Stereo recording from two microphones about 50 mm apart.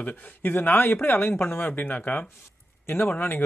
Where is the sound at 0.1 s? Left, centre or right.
Left.